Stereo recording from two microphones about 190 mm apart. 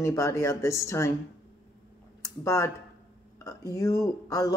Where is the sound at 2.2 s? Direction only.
15° left (ahead or behind).